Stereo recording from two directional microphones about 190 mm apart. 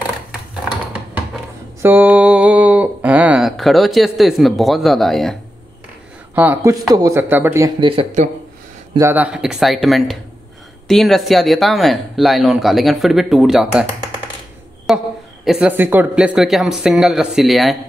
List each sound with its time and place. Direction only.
0.9 s a sound: 10° right (ahead or behind)
6.3 s speech: 10° right (ahead or behind)
8.9 s speech: 10° right (ahead or behind)
14.9 s speech: centre (ahead or behind)